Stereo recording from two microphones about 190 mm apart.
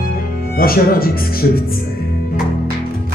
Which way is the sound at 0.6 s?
50° left (ahead or behind).